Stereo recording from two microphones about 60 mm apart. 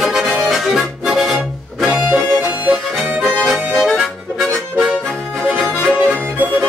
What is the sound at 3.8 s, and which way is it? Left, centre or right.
Music, centre.